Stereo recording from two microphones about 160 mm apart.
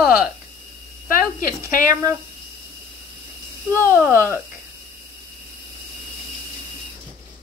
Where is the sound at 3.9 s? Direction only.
15° right (ahead or behind).